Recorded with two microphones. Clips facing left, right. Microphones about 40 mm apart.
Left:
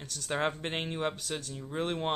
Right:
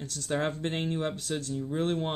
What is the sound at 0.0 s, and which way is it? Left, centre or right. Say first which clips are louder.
Speech: right 1 dB; left.